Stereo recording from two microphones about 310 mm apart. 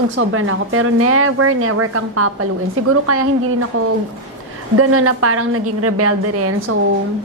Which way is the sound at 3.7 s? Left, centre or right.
Right.